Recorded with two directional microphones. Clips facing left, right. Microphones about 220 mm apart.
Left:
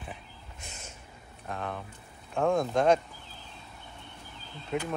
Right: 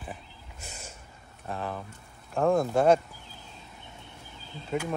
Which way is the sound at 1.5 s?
Centre (ahead or behind).